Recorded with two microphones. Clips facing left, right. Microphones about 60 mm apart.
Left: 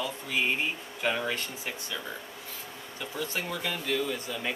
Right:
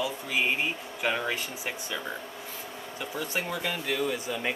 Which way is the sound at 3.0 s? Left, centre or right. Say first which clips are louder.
Right 1 dB; centre.